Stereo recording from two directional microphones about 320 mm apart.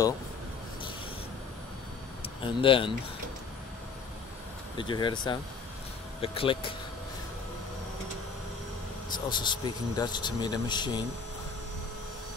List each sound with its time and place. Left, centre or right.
2.2 s speech: centre
4.7 s speech: centre
9.1 s speech: centre